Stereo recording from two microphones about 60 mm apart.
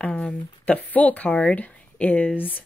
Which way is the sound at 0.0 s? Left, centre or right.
Left.